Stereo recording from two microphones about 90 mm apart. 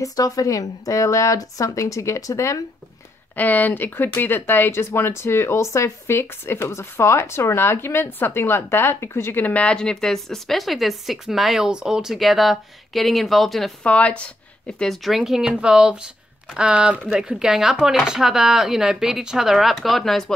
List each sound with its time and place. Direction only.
0.0 s a woman's voice: 40° left (ahead or behind)
3.3 s speech: 20° left (ahead or behind); by 13.7 s centre (ahead or behind)
13.8 s speech: 15° left (ahead or behind)